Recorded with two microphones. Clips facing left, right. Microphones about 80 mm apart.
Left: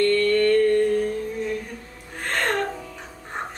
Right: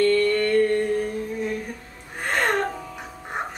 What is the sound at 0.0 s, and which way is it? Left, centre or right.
Mantra, centre.